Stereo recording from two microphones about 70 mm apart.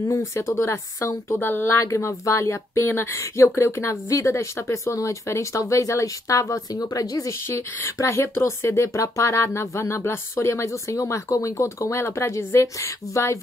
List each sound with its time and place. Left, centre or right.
0.0 s speech: left
1.8 s speech: left
7.4 s speech: left